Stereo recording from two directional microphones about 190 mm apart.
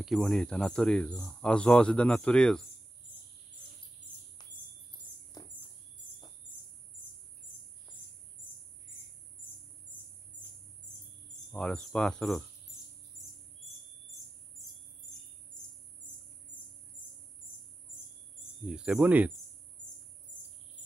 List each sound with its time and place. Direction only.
0.0 s speech: centre (ahead or behind)
5.3 s a sound: 20° left (ahead or behind)
11.5 s speech: 5° left (ahead or behind)
18.7 s speech: 5° right (ahead or behind)